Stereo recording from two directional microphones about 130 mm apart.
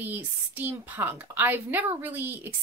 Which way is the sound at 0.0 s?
15° right (ahead or behind).